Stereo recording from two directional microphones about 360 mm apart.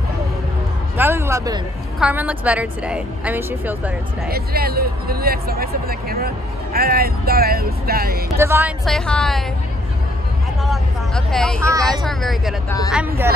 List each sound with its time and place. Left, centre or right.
0.9 s a woman's voice: centre
4.3 s speech: right
8.4 s speech: centre
10.6 s speech: centre